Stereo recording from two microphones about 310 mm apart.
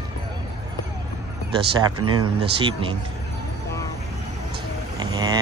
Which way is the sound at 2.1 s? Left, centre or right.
Centre.